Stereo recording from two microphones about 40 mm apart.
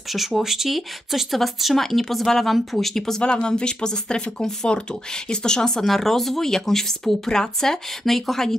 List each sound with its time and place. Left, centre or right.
0.1 s speech: centre
2.9 s speech: centre
3.2 s speech: left
5.8 s speech: centre